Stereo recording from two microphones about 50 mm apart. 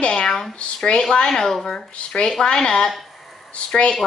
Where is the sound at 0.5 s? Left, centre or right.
Left.